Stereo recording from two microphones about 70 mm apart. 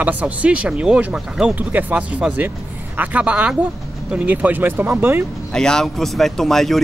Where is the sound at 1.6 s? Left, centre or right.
Right.